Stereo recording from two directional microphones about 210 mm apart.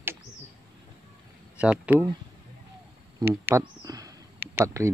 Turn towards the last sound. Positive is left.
turn(degrees=-15)  # may be behind; listen again after turning